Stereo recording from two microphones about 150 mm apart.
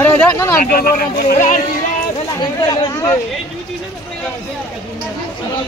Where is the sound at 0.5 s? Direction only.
85° left.